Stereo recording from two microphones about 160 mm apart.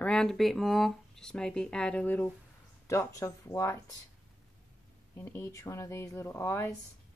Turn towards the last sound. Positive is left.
turn(degrees=15)  # may be behind; listen again after turning